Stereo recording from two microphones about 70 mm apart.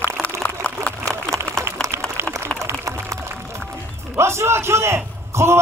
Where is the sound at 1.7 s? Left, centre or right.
Right.